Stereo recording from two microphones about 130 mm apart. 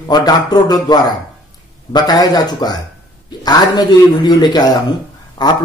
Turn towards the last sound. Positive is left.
turn(degrees=30)  # may be behind; listen again after turning